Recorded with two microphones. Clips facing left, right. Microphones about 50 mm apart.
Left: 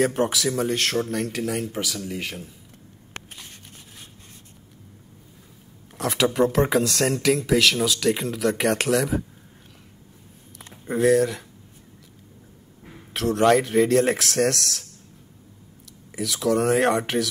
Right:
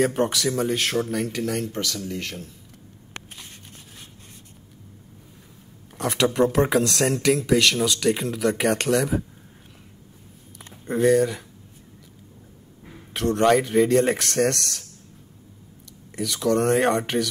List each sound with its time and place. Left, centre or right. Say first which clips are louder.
0.0 s speech: even; centre
5.9 s speech: even; centre
10.9 s speech: even; centre
12.8 s speech: even; centre
16.2 s speech: even; centre